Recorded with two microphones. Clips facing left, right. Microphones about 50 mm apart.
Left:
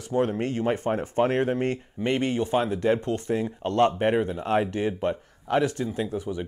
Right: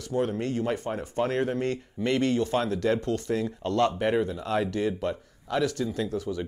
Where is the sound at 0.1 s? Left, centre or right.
Left.